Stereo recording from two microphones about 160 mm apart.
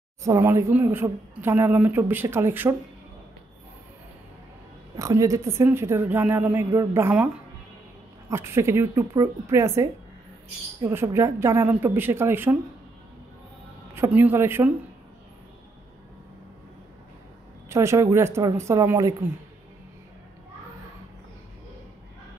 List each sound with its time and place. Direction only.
0.2 s speech: 15° right (ahead or behind)
4.9 s speech: 20° right (ahead or behind)
8.3 s speech: 15° right (ahead or behind)
13.9 s speech: 15° right (ahead or behind)
17.6 s speech: 20° right (ahead or behind)